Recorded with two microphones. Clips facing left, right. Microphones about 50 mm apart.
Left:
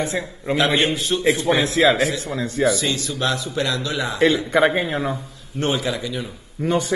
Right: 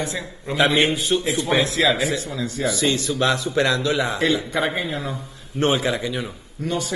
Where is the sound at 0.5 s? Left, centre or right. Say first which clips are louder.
Left 1 dB; left.